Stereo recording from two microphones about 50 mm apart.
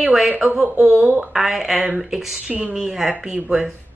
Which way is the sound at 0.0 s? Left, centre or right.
Centre.